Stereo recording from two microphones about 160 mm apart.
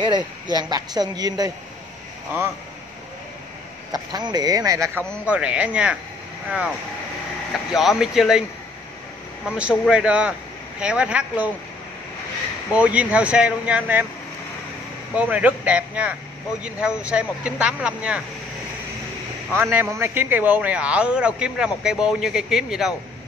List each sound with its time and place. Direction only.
0.6 s speech: 25° right (ahead or behind)
3.9 s speech: 25° right (ahead or behind)
5.2 s a man's voice: 10° right (ahead or behind)
7.5 s speech: centre (ahead or behind)
9.5 s a man's voice: 5° right (ahead or behind)
12.7 s a man's voice: 10° right (ahead or behind)
15.1 s a man's voice: 10° right (ahead or behind)
19.5 s a man's voice: 15° right (ahead or behind)